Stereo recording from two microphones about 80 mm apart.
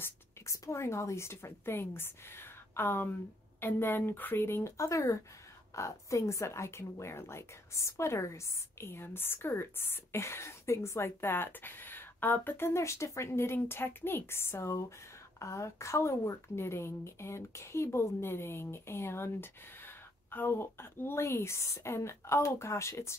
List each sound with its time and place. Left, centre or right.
0.0 s a woman's voice: left